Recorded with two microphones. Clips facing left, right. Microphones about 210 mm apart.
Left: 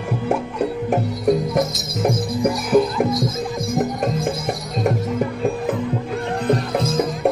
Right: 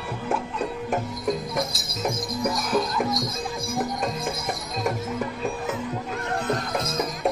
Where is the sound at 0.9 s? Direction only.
55° left (ahead or behind).